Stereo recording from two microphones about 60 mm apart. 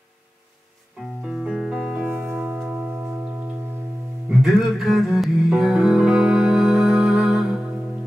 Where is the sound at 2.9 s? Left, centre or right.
Right.